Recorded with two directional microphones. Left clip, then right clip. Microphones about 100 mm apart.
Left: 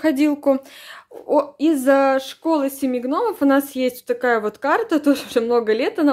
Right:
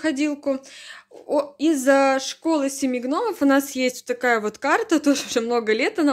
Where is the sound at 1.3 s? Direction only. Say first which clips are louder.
Left 4 dB; 25° left (ahead or behind).